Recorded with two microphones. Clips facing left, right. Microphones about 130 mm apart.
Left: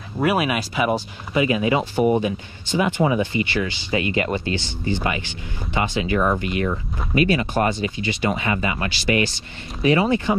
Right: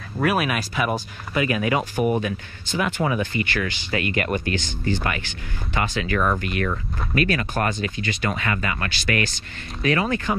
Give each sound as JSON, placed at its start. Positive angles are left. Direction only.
{"t": 0.2, "sound": "speech", "side_deg": 15}